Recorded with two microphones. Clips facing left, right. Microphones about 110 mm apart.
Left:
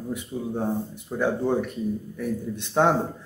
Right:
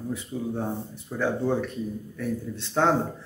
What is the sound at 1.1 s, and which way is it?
Speech, 15° left (ahead or behind).